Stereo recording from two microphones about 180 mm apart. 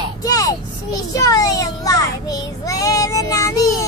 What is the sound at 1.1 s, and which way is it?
Child singing, 20° left (ahead or behind).